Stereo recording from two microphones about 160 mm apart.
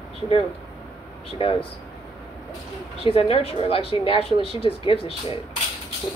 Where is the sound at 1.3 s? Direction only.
35° left (ahead or behind).